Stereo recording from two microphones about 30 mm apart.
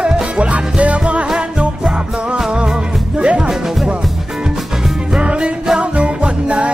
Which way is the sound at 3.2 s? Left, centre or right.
Right.